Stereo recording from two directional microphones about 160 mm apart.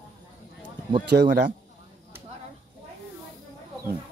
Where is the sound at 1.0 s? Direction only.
90° right.